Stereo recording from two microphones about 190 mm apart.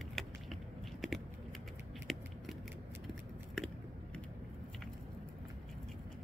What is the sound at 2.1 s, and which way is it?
Scissors, centre (ahead or behind).